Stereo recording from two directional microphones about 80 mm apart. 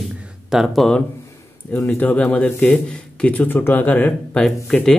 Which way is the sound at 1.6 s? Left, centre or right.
Left.